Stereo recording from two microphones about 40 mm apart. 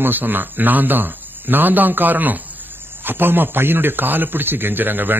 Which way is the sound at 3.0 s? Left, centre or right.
Right.